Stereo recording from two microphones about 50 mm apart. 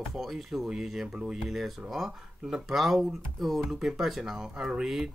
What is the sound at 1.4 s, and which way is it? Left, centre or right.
Speech, centre.